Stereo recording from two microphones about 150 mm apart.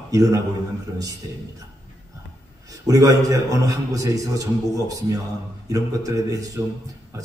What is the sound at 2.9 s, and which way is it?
A man's voice, 25° right (ahead or behind).